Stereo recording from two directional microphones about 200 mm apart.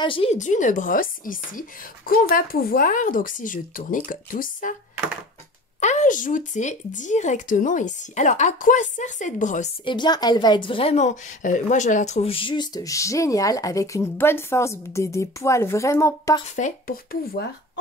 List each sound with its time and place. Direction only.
0.0 s a woman's voice: 25° left (ahead or behind); by 4.7 s 45° left (ahead or behind)
5.8 s speech: 35° left (ahead or behind)
9.8 s speech: 20° left (ahead or behind)
16.4 s a woman's voice: 35° left (ahead or behind)